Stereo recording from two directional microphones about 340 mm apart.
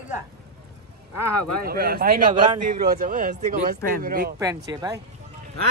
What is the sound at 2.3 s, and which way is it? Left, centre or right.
Speech, centre.